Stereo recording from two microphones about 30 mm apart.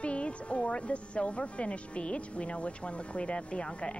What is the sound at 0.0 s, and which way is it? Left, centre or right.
A woman's voice, left.